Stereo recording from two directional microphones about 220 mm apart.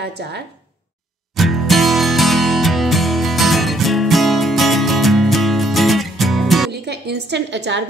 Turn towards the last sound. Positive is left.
turn(degrees=-50)  # may be behind; listen again after turning